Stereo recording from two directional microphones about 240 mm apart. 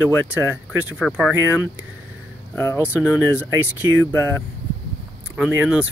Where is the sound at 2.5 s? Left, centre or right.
Centre.